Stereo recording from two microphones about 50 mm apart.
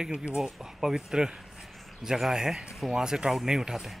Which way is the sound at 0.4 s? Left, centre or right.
Centre.